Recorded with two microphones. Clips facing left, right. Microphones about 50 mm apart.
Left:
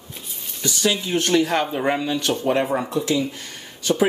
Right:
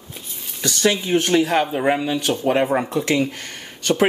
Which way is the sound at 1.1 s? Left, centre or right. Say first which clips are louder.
Right 1 dB; centre.